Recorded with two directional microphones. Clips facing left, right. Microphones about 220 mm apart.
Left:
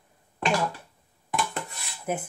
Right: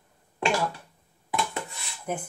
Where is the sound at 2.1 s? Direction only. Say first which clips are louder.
Left 2 dB; 5° left (ahead or behind).